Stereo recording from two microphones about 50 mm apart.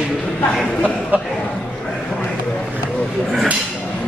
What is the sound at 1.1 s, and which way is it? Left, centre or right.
Speech, right.